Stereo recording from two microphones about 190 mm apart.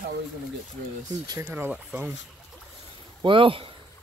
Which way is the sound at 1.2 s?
20° right (ahead or behind).